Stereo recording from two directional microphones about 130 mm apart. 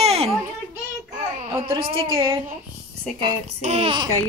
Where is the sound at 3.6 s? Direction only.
55° right (ahead or behind).